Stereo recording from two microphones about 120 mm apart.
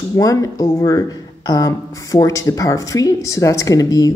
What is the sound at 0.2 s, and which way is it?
Speech, 30° left (ahead or behind).